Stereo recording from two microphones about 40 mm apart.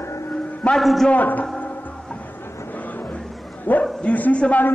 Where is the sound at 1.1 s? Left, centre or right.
Left.